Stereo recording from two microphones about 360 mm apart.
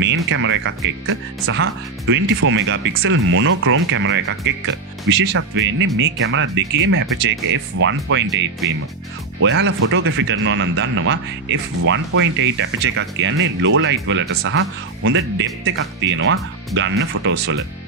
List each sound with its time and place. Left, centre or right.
0.0 s speech: right
9.4 s speech: right